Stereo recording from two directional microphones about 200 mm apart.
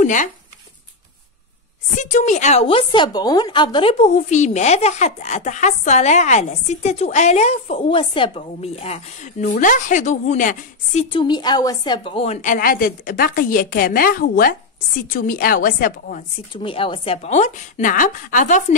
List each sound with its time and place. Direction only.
0.0 s speech: 40° left (ahead or behind)
2.0 s a woman's voice: 35° left (ahead or behind)
11.1 s a woman's voice: 25° left (ahead or behind); by 16.3 s 40° left (ahead or behind)
16.5 s a woman's voice: 25° left (ahead or behind)